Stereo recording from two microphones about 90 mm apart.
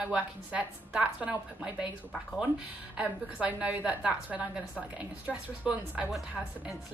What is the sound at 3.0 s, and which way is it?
A woman's voice, 15° right (ahead or behind).